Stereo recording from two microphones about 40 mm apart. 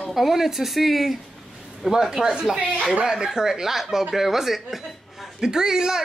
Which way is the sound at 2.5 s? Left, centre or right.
Right.